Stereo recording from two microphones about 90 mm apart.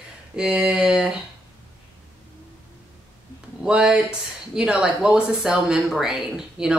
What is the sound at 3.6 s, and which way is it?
Speech, 10° right (ahead or behind).